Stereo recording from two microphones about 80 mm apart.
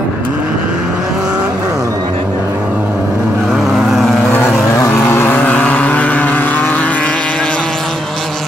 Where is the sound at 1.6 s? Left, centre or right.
Right.